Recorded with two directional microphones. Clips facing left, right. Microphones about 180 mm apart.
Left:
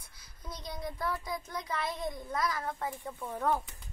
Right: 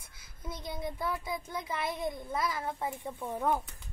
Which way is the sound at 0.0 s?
25° right (ahead or behind).